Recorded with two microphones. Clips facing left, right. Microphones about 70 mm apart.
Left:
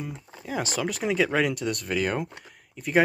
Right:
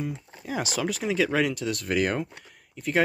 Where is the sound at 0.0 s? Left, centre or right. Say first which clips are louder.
Right 3 dB; centre.